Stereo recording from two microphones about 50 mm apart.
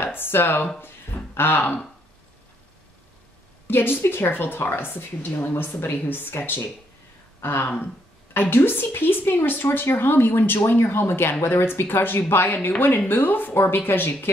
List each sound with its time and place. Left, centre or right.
0.0 s speech: left
3.6 s a woman's voice: left